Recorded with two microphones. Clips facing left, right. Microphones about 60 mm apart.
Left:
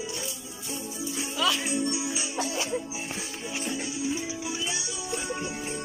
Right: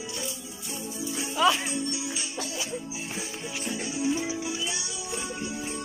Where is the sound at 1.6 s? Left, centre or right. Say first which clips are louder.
Left 3 dB; centre.